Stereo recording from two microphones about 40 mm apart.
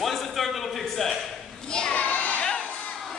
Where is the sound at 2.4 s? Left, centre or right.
Left.